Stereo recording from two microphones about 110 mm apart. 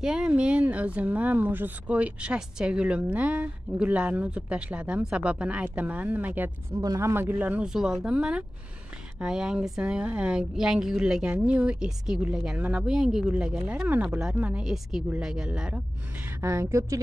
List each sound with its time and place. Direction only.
0.0 s speech: 5° right (ahead or behind)
6.8 s speech: 30° right (ahead or behind); by 16.3 s 10° right (ahead or behind)
16.3 s a woman's voice: 25° right (ahead or behind)